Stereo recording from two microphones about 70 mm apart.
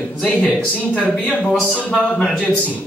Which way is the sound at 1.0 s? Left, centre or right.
Centre.